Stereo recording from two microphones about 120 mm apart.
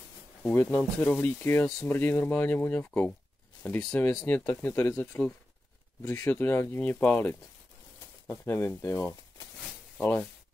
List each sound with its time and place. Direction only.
0.4 s speech: 15° left (ahead or behind)